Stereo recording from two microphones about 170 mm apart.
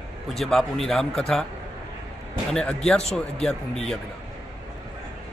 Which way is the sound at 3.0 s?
40° left (ahead or behind).